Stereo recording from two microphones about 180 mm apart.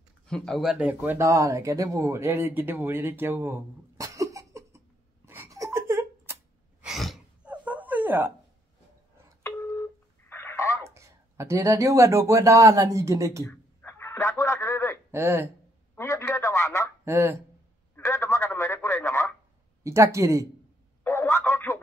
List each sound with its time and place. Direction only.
0.3 s a sound: centre (ahead or behind)
6.8 s gasp: centre (ahead or behind)
9.4 s telephone dialing: 15° left (ahead or behind)
10.8 s speech: 15° right (ahead or behind)
13.5 s a sound: 10° left (ahead or behind)
15.0 s speech: 15° right (ahead or behind)
16.0 s telephone: 15° left (ahead or behind)
17.0 s speech: 15° right (ahead or behind)
17.9 s telephone: 15° left (ahead or behind)
19.8 s speech: 15° right (ahead or behind)
21.0 s a sound: 15° left (ahead or behind)